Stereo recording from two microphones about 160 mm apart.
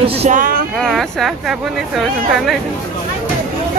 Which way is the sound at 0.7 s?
Centre (ahead or behind).